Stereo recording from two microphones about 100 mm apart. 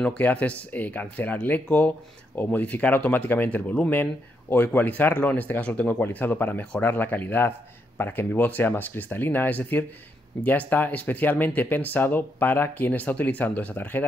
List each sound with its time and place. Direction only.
0.0 s speech: 10° left (ahead or behind)